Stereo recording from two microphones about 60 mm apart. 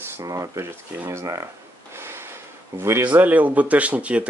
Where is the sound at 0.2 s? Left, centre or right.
Right.